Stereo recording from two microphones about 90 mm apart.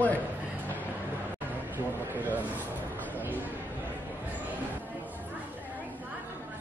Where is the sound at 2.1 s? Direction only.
20° right (ahead or behind).